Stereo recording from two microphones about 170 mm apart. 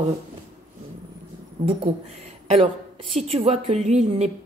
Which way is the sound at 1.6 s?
30° right (ahead or behind).